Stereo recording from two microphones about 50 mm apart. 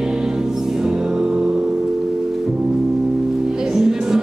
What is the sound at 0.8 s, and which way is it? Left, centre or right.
Music, centre.